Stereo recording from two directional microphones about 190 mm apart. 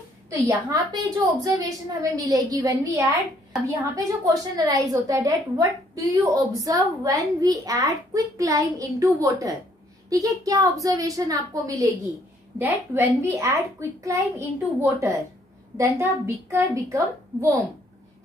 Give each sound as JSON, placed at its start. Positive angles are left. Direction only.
{"t": 0.3, "sound": "a woman's voice", "side_deg": -15}